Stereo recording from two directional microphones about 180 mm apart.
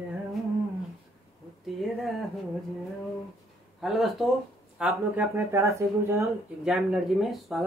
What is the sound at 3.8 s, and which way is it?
Speech, centre (ahead or behind).